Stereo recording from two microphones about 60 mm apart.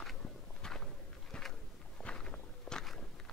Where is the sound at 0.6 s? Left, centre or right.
Centre.